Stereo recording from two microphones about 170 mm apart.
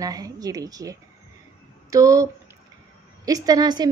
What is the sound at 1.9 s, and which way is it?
A woman's voice, 20° right (ahead or behind).